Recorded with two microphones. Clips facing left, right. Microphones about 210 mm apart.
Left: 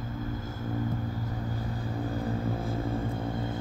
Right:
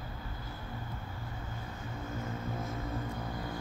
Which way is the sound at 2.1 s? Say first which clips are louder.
Left 7 dB; 35° left (ahead or behind).